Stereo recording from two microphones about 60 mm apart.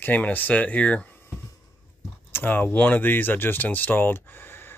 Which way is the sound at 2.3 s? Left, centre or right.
Left.